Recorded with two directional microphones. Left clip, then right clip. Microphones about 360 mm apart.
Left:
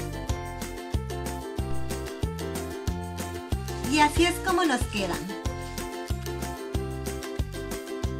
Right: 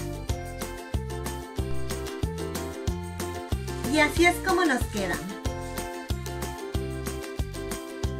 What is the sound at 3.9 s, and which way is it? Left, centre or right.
Speech, centre.